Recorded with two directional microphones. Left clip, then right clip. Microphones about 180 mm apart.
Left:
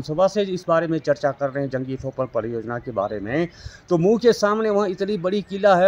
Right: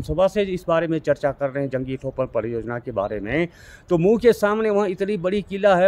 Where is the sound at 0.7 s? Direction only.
Centre (ahead or behind).